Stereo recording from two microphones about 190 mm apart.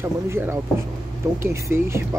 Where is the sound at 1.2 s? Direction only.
15° right (ahead or behind).